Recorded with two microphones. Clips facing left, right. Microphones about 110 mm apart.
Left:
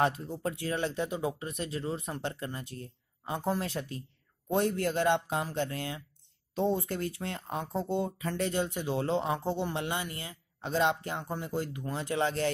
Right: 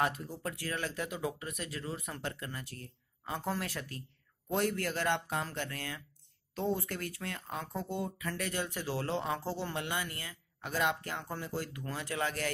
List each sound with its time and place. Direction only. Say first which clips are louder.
0.0 s speech: left 4 dB; 25° left (ahead or behind)